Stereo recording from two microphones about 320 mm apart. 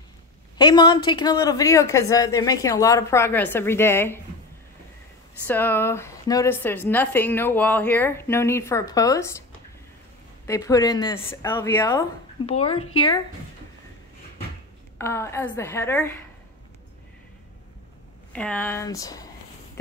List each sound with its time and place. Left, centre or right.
0.6 s a woman's voice: centre
5.5 s a woman's voice: centre
10.4 s a woman's voice: centre
15.0 s a woman's voice: centre
18.3 s a woman's voice: centre